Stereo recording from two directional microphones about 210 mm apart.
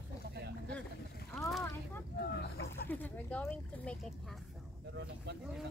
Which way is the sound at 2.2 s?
50° left (ahead or behind).